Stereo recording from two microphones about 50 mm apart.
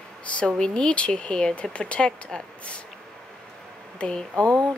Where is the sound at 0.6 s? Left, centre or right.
Centre.